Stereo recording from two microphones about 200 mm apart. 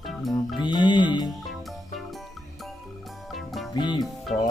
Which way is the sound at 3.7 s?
20° left (ahead or behind).